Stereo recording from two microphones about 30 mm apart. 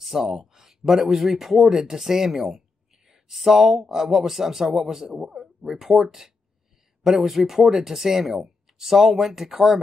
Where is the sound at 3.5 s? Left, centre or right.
Centre.